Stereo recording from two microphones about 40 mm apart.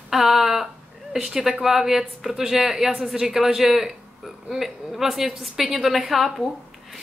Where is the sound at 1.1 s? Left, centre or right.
Centre.